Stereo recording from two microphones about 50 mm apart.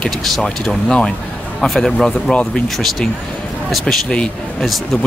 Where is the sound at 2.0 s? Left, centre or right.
Centre.